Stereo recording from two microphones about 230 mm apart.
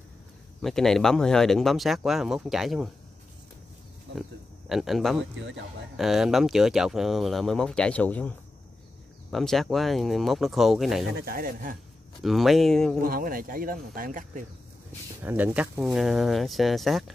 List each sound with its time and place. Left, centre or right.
0.6 s speech: centre
4.1 s speech: right
4.6 s speech: centre
11.1 s speech: right
12.2 s speech: centre
13.0 s speech: right
15.2 s speech: centre